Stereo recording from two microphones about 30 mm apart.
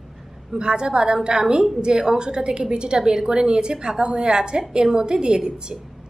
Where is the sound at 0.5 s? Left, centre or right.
Right.